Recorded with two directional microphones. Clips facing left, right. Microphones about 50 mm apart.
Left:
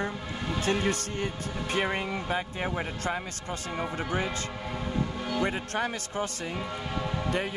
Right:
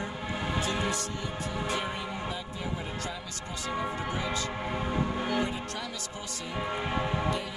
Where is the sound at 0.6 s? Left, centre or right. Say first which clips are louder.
Left 3 dB; left.